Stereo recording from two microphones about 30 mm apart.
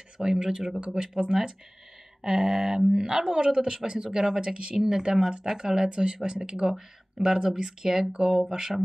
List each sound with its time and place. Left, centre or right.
0.2 s speech: right
0.7 s speech: right
1.3 s speech: centre
2.2 s speech: right